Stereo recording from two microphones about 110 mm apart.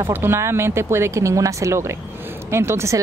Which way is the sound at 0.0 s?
20° right (ahead or behind).